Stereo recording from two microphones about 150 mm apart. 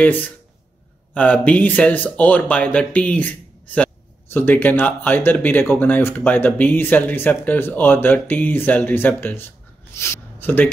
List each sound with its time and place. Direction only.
0.0 s speech: 10° left (ahead or behind)